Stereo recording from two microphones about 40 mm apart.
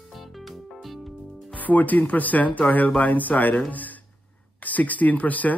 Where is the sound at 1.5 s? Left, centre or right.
Left.